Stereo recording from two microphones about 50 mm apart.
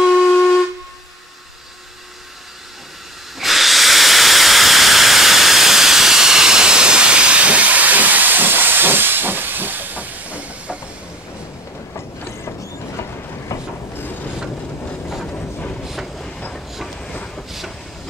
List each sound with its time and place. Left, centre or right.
0.0 s steam whistle: centre
3.3 s hiss: centre; by 10.8 s right
13.5 s train: left
13.9 s train: left
15.8 s train: centre
16.2 s train: centre